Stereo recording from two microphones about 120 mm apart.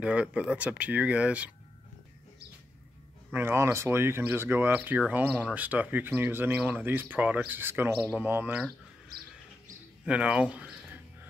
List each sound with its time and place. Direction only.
0.0 s speech: 10° right (ahead or behind)
3.3 s speech: 20° right (ahead or behind)
10.0 s speech: 10° right (ahead or behind)